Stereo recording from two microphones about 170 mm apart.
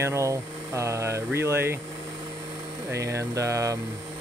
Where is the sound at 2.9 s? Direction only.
15° right (ahead or behind).